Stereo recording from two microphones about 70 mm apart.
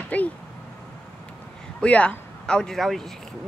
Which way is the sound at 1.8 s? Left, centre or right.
Centre.